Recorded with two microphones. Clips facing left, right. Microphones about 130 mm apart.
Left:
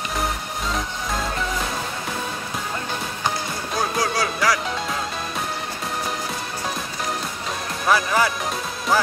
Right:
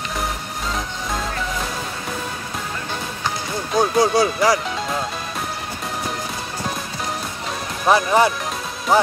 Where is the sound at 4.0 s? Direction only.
25° right (ahead or behind).